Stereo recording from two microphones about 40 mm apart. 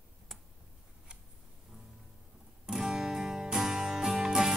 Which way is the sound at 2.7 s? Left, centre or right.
Centre.